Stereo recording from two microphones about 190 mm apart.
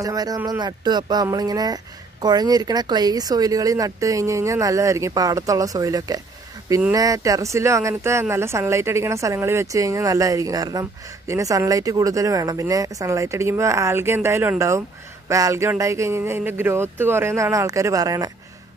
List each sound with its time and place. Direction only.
0.0 s speech: 20° right (ahead or behind)